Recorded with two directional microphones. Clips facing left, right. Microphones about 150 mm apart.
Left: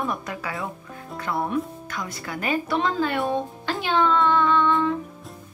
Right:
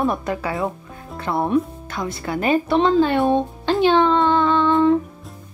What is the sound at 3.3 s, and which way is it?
Music, 25° right (ahead or behind).